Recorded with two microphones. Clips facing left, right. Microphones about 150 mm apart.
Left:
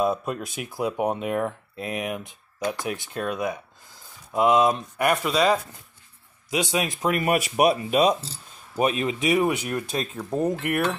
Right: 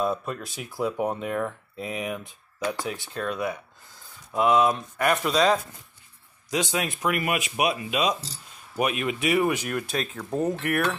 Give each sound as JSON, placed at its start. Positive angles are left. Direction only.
{"t": 0.0, "sound": "speech", "side_deg": 10}
{"t": 7.2, "sound": "speech", "side_deg": 35}
{"t": 10.3, "sound": "speech", "side_deg": 10}